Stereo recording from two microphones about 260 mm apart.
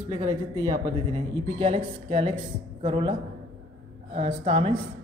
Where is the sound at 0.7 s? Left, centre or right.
Centre.